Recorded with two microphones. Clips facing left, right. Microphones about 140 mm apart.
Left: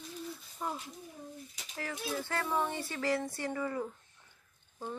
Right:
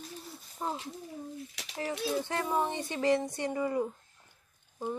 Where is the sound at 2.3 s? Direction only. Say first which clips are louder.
Right 3 dB; 20° right (ahead or behind).